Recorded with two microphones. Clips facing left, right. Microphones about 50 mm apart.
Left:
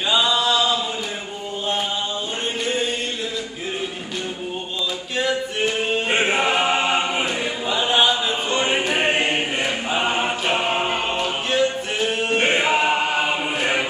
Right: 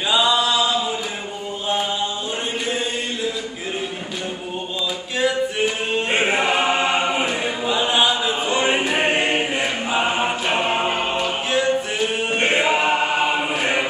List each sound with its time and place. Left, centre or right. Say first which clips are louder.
0.1 s a sound: right 1 dB; centre
5.9 s choir: even; centre
7.1 s chant: right 2 dB; centre
8.5 s music: right 1 dB; centre
9.6 s choir: right 1 dB; centre